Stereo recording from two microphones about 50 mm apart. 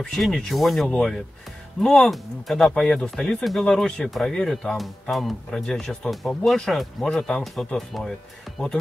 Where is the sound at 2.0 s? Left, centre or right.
Centre.